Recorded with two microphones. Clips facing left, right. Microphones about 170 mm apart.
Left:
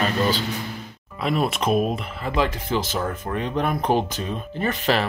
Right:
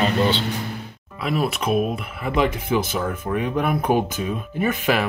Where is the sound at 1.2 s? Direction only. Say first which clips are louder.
Even; centre (ahead or behind).